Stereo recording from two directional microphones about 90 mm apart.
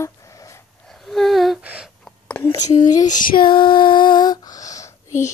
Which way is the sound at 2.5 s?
35° left (ahead or behind).